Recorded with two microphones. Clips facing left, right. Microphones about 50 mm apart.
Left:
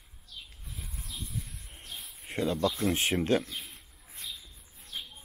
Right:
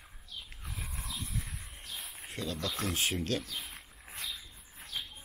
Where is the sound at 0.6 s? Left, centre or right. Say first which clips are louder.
Right 3 dB; right.